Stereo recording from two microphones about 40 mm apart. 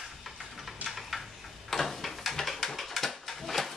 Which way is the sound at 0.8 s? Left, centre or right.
Centre.